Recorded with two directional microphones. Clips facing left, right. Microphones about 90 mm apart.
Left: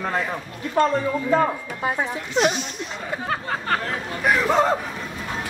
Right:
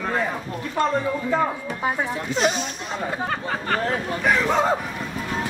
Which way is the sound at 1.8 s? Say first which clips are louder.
Even; 5° left (ahead or behind).